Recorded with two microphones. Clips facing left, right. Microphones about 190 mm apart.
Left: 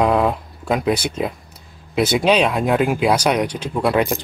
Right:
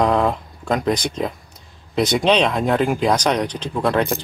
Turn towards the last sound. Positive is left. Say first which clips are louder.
# left 1 dB
turn(degrees=5)  # may be behind; listen again after turning